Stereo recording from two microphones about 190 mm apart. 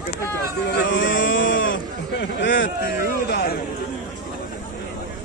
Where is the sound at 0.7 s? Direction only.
70° left (ahead or behind).